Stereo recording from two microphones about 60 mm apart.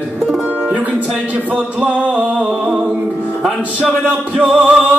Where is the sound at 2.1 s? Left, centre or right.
Centre.